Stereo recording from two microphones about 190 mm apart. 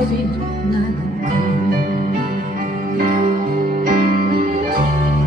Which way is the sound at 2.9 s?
45° right (ahead or behind).